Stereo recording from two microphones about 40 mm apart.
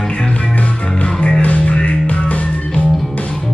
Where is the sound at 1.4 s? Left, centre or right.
Left.